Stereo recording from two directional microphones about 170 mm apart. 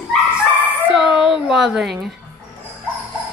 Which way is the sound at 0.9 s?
5° right (ahead or behind).